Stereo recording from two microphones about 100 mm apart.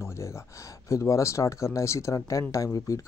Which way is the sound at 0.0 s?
25° left (ahead or behind).